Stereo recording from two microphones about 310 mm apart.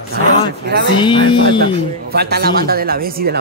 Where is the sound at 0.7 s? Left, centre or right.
Right.